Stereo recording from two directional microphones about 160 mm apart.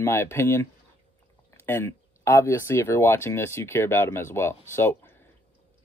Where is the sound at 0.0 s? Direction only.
15° left (ahead or behind).